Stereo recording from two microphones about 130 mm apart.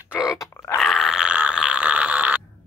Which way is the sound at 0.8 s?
Centre (ahead or behind).